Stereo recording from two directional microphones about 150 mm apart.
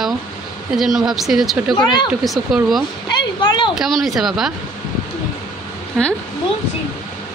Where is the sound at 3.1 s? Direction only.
30° left (ahead or behind).